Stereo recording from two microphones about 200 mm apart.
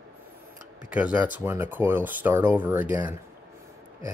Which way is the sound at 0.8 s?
5° right (ahead or behind).